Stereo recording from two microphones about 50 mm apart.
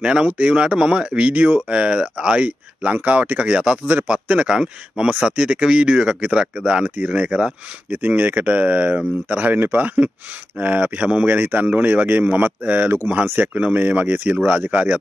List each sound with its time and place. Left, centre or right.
0.0 s speech: right
7.9 s speech: right